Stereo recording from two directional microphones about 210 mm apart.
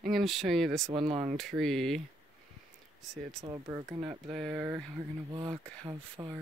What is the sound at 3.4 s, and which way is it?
Speech, 20° right (ahead or behind).